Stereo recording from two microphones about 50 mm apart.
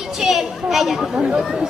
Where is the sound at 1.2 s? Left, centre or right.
Centre.